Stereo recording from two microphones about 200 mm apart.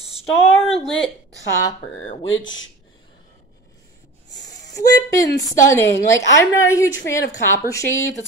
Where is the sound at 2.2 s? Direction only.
75° left (ahead or behind).